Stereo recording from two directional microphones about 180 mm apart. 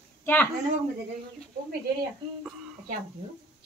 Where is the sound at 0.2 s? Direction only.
10° left (ahead or behind).